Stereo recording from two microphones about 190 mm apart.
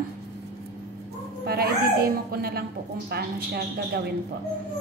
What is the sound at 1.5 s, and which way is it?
Speech, 55° right (ahead or behind).